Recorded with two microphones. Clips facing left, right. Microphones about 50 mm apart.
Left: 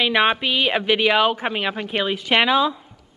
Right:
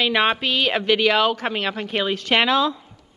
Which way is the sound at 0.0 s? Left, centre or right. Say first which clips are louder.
Left 1 dB; centre.